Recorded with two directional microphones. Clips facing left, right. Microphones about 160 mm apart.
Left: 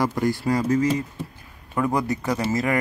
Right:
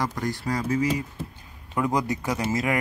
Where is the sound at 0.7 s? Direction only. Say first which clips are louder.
Left 4 dB; 10° right (ahead or behind).